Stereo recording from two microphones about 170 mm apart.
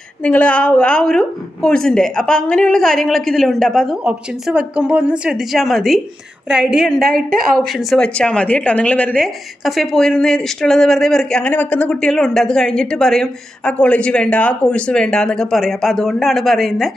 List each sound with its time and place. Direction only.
0.2 s a woman's voice: 10° left (ahead or behind)
7.1 s speech: 60° right (ahead or behind)
7.5 s a woman's voice: centre (ahead or behind)